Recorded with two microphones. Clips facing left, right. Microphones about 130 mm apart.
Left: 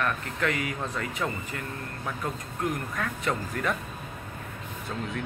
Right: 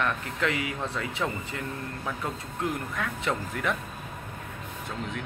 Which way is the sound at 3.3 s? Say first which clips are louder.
Even; centre (ahead or behind).